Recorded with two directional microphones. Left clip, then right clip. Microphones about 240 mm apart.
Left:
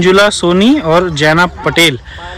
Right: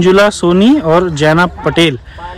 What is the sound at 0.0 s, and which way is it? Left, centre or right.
Speech, centre.